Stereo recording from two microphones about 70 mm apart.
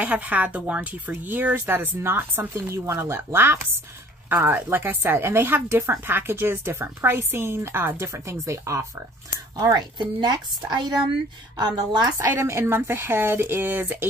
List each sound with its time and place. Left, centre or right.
0.0 s a woman's voice: right
8.1 s speech: right
9.6 s a woman's voice: right
12.3 s a woman's voice: right